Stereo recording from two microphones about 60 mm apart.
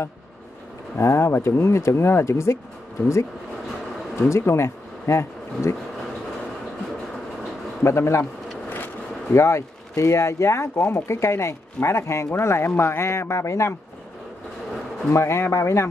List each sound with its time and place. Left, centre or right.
0.9 s speech: left
4.2 s speech: left
7.8 s speech: left
8.6 s vehicle: left
9.3 s speech: left
15.1 s speech: left